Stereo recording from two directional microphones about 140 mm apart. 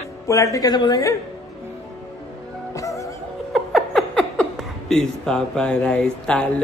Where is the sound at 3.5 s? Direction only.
Centre (ahead or behind).